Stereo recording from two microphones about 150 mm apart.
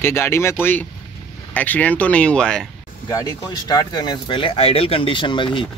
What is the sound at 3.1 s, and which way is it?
Speech, 25° left (ahead or behind).